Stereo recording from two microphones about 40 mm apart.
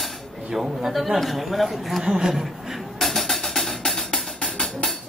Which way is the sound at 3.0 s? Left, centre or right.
Centre.